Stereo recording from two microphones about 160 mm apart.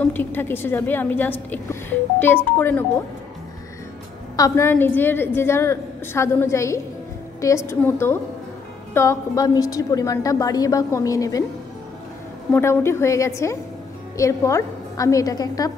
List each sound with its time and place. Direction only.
0.0 s a woman's voice: 10° left (ahead or behind)
4.4 s a woman's voice: 15° left (ahead or behind)
12.5 s a woman's voice: 15° left (ahead or behind)